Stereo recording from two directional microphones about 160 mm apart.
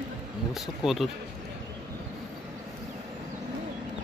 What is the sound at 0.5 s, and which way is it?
Speech, centre (ahead or behind).